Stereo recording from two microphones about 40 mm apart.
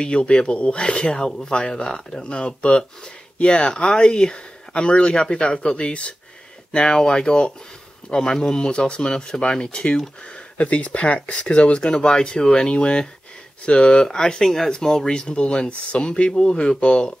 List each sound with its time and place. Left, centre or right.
0.0 s speech: left
10.6 s speech: left